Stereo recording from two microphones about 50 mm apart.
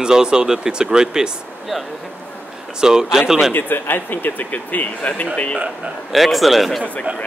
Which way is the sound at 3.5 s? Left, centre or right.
Left.